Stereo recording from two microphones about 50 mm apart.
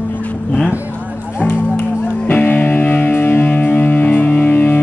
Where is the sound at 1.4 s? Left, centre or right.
Left.